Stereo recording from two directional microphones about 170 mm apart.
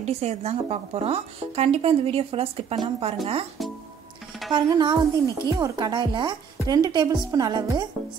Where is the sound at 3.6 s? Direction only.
Centre (ahead or behind).